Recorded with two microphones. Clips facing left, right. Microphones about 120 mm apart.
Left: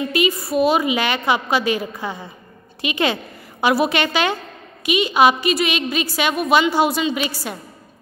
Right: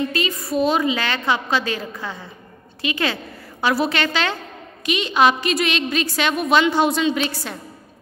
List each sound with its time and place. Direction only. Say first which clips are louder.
0.0 s a woman's voice: left 3 dB; 10° left (ahead or behind)